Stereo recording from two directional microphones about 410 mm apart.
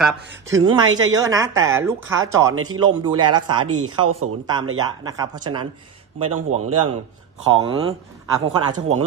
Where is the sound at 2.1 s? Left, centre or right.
Right.